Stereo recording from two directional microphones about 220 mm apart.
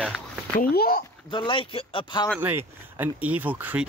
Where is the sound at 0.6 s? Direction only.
45° left (ahead or behind).